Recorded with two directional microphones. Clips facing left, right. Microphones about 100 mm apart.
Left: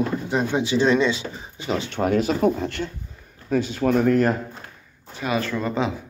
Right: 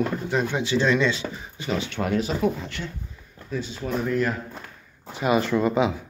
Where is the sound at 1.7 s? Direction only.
40° left (ahead or behind).